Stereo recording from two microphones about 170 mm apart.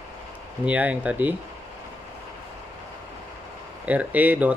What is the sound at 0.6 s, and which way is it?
Speech, 10° right (ahead or behind).